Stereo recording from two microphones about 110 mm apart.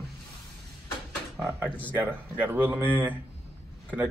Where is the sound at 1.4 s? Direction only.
20° right (ahead or behind).